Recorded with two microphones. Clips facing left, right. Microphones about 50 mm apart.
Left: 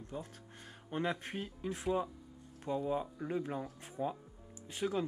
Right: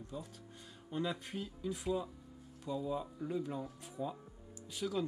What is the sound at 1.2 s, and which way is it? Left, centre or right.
Speech, left.